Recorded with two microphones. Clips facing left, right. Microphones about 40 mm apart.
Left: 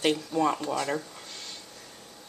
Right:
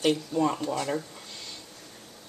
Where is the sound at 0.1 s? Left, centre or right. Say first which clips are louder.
Even; centre.